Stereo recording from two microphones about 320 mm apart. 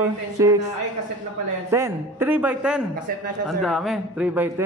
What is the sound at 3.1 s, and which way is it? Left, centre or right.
Speech, right.